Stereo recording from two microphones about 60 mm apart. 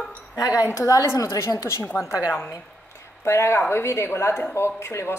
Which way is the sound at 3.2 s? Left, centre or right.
Left.